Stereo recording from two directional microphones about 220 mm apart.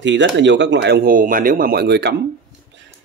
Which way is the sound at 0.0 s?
55° right (ahead or behind).